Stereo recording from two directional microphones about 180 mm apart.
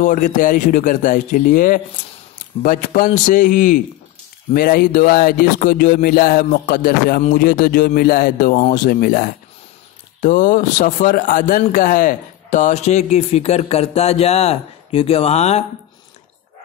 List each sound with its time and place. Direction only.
0.0 s music: 45° left (ahead or behind)
10.2 s a man's voice: 50° left (ahead or behind)